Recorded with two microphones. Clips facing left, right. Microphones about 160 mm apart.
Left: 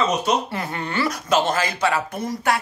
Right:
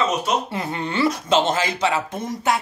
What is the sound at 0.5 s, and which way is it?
Speech, 20° right (ahead or behind).